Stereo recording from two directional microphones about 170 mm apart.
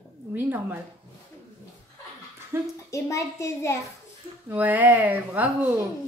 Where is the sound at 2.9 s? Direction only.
20° left (ahead or behind).